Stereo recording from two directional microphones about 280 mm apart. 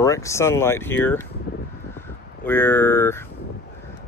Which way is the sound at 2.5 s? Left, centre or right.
Centre.